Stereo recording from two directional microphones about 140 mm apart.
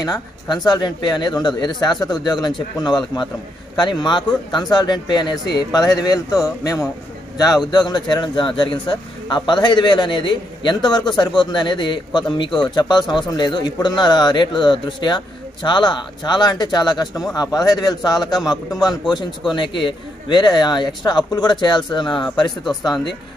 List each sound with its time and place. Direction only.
0.0 s speech: 30° left (ahead or behind)